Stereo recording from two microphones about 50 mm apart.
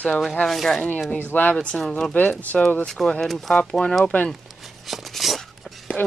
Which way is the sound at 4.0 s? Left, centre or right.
Left.